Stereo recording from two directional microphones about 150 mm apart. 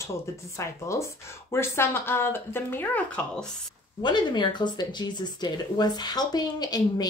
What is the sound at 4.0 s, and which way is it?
Speech, 30° left (ahead or behind).